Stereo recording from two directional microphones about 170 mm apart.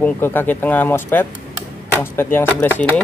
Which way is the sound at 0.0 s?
10° left (ahead or behind).